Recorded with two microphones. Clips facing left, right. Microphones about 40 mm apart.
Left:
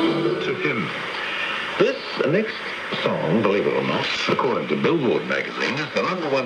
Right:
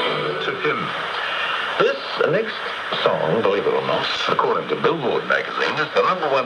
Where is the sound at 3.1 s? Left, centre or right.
Centre.